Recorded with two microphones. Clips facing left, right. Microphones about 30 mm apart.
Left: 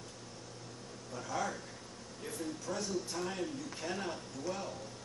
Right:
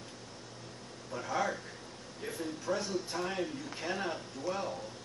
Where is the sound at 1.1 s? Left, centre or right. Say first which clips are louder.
Right 4 dB; right.